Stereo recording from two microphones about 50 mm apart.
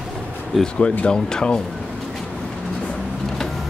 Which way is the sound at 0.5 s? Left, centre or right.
Centre.